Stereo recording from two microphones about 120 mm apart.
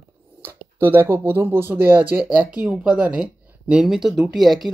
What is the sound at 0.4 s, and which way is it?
Speech, 15° right (ahead or behind).